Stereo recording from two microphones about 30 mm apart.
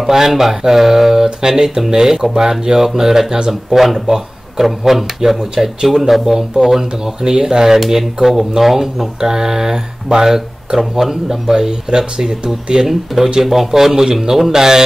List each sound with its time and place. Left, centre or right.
0.0 s speech: centre
3.7 s speech: centre
5.4 s speech: right
5.9 s speech: centre; by 12.8 s right
12.8 s speech: centre